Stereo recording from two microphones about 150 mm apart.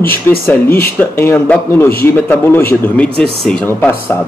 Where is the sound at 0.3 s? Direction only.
15° left (ahead or behind).